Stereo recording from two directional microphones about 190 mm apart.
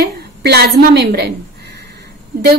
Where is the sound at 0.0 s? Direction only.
60° right (ahead or behind).